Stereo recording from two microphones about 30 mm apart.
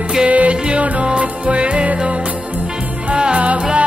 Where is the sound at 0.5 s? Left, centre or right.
Right.